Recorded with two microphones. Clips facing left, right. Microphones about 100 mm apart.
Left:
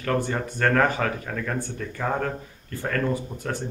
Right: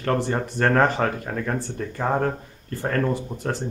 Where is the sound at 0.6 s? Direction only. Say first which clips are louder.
Right 2 dB; 25° right (ahead or behind).